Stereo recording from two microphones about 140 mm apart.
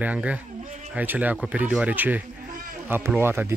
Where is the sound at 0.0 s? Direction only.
10° right (ahead or behind).